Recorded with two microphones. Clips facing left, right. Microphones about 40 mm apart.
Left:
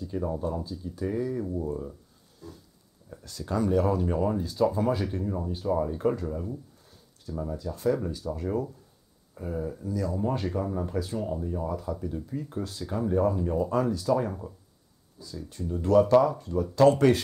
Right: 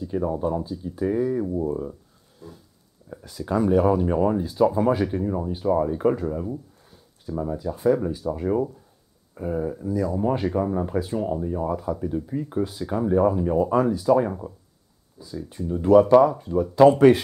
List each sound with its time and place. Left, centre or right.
0.0 s speech: centre